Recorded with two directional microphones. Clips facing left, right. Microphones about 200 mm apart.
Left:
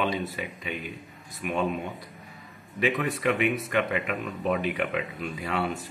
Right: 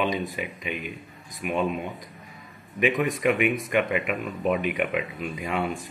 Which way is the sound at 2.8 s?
15° right (ahead or behind).